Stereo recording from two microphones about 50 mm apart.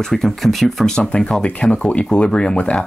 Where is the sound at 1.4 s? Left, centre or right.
Left.